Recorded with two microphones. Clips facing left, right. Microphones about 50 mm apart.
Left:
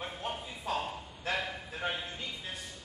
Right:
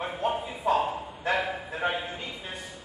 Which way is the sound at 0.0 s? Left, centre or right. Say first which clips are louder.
Right 9 dB; centre.